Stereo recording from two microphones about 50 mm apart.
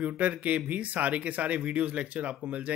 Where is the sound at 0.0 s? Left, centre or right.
Right.